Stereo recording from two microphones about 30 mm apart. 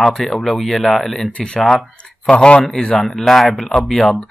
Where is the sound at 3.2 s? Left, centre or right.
Centre.